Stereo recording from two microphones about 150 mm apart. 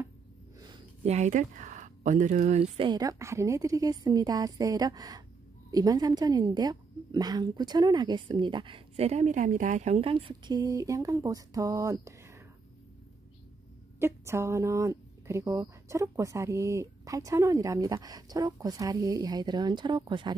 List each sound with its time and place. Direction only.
1.0 s speech: 50° right (ahead or behind)
2.8 s a woman's voice: 25° right (ahead or behind)
13.9 s a woman's voice: 15° right (ahead or behind)